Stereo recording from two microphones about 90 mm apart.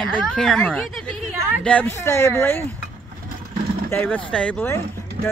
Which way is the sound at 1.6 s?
15° left (ahead or behind).